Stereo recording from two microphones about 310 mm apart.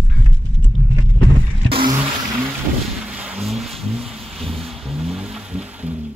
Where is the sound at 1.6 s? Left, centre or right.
Centre.